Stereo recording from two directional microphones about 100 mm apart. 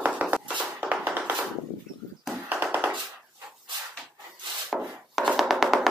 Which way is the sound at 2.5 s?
20° right (ahead or behind).